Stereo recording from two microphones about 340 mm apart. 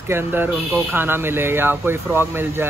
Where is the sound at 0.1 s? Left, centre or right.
Centre.